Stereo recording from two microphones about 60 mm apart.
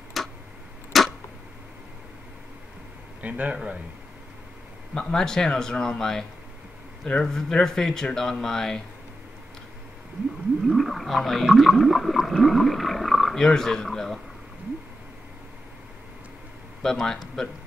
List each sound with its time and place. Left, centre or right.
0.2 s tick-tock: centre
0.9 s a sound: centre
3.2 s speech: right
4.9 s speech: centre
10.7 s a sound: centre
16.8 s speech: centre